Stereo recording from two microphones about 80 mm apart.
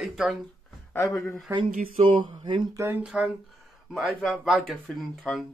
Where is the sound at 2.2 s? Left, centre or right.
Right.